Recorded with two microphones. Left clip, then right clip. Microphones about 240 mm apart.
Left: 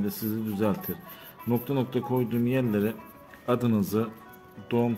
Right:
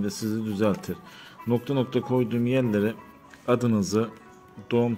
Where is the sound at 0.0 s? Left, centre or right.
Centre.